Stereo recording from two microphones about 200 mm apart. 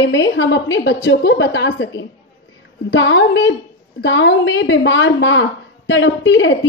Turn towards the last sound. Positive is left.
turn(degrees=65)  # may be behind; listen again after turning